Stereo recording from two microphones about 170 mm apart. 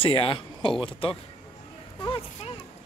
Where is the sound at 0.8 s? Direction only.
30° left (ahead or behind).